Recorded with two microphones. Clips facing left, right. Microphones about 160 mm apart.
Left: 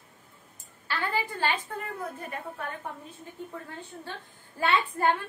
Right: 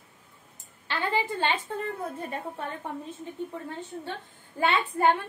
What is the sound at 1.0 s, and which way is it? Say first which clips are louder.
Speech: right 3 dB; 20° right (ahead or behind).